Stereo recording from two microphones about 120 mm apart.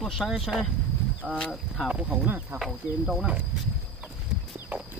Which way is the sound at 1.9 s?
10° right (ahead or behind).